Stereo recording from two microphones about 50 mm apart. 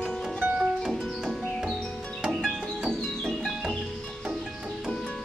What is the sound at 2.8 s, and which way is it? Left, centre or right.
Music, centre.